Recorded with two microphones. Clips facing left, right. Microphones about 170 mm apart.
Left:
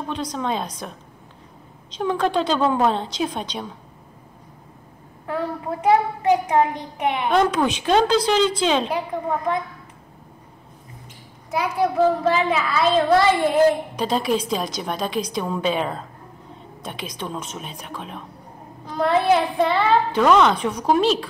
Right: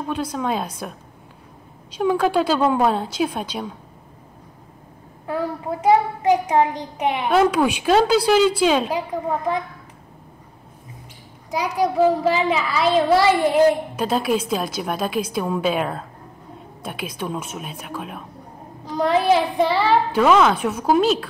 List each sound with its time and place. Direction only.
0.1 s a child's voice: 5° right (ahead or behind)
5.2 s a child's voice: 20° right (ahead or behind)
7.2 s a child's voice: 5° right (ahead or behind)
11.5 s a child's voice: 15° right (ahead or behind)
19.4 s a woman's voice: 5° right (ahead or behind)